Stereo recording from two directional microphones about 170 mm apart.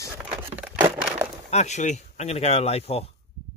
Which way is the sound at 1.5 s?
40° left (ahead or behind).